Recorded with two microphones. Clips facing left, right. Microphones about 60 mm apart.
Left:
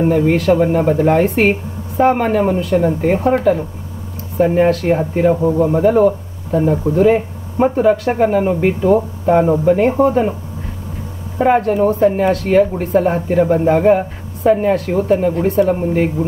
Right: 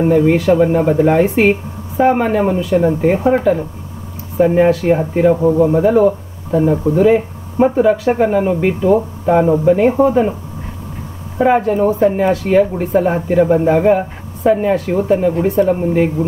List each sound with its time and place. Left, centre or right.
0.0 s speech: centre
11.3 s speech: centre